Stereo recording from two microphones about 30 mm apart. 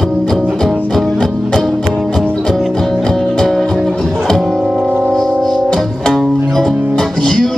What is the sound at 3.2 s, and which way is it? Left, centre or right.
Music, left.